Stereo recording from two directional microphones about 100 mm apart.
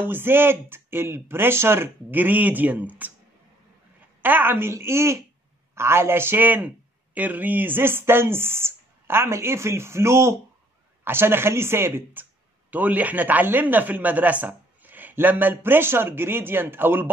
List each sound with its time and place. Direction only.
0.0 s speech: 20° right (ahead or behind)
4.2 s speech: 20° right (ahead or behind)